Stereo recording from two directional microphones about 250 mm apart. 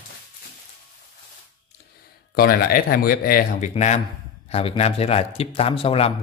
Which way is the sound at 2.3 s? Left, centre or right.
Left.